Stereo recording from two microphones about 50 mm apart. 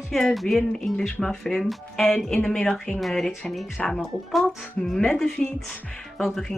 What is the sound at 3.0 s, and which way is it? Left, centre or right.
Speech, centre.